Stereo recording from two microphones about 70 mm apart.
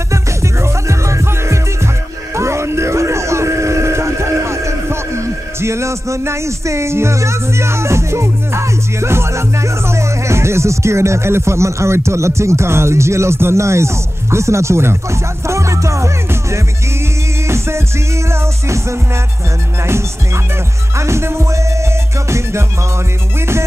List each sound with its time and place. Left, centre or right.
0.1 s music: right
2.3 s speech: right
17.5 s music: right
20.9 s music: right